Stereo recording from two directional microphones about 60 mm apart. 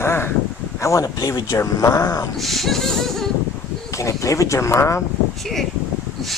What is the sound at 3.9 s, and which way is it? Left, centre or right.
Speech, left.